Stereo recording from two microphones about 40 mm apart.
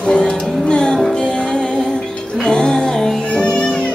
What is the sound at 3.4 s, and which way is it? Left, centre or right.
Music, left.